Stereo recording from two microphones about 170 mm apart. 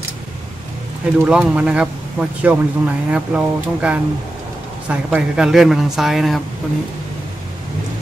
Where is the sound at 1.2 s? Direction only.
5° right (ahead or behind).